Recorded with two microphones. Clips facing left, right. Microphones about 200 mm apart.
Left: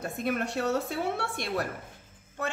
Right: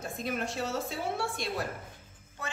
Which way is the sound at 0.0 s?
60° left (ahead or behind).